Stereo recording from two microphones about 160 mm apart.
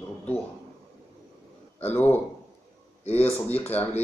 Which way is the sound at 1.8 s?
10° left (ahead or behind).